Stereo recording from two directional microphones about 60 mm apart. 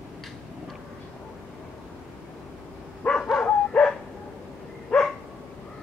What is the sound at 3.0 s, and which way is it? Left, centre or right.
Dog, left.